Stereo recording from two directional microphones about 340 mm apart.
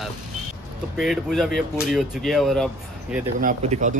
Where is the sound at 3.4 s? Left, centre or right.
Right.